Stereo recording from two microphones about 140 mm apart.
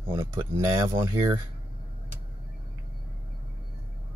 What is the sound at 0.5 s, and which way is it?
Speech, 20° right (ahead or behind).